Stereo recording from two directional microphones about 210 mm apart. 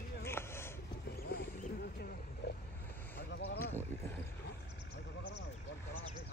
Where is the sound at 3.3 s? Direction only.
50° left (ahead or behind).